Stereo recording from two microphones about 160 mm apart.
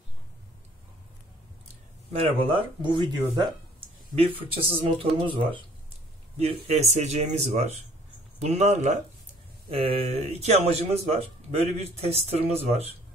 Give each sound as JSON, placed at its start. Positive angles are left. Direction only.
{"t": 2.1, "sound": "speech", "side_deg": -30}
{"t": 4.6, "sound": "speech", "side_deg": -35}